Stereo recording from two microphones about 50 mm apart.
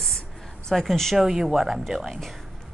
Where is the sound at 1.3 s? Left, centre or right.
Centre.